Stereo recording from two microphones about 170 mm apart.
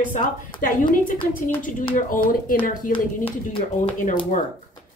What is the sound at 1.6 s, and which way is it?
A woman's voice, 50° left (ahead or behind).